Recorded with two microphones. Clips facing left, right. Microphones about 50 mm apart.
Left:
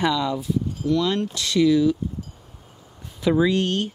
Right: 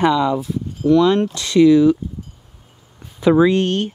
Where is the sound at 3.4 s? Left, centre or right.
Right.